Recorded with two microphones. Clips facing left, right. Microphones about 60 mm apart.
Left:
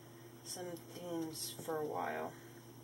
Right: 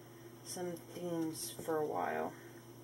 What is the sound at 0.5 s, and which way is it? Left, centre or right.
Speech, centre.